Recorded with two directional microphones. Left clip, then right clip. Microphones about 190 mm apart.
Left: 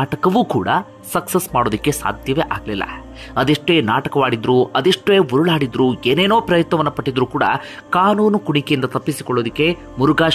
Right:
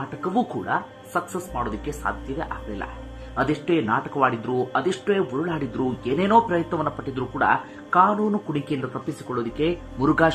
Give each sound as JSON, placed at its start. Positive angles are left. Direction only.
{"t": 0.2, "sound": "speech", "side_deg": 50}